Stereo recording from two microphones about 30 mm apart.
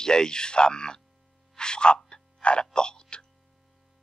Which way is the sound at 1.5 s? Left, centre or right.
Left.